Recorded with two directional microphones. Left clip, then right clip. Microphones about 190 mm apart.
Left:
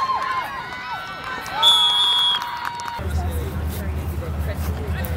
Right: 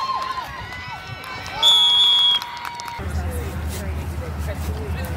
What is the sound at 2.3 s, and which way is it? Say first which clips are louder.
Run: right 1 dB; 55° right (ahead or behind).